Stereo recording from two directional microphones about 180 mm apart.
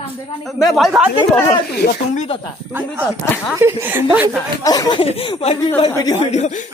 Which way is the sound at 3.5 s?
15° right (ahead or behind).